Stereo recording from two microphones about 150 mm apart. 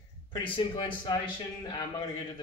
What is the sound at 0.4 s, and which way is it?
A man's voice, 35° left (ahead or behind).